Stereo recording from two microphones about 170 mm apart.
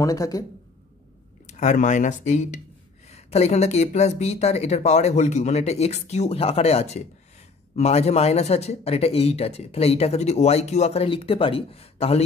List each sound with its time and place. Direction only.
0.0 s speech: 20° left (ahead or behind)
1.6 s speech: 45° left (ahead or behind)